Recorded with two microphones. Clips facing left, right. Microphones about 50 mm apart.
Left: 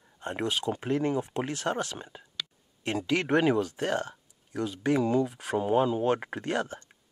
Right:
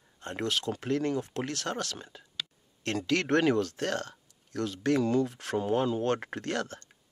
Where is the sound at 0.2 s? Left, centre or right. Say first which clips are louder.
Left 1 dB; centre.